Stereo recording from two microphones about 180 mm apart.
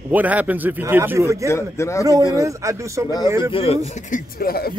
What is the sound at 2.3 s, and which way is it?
Speech, 15° right (ahead or behind).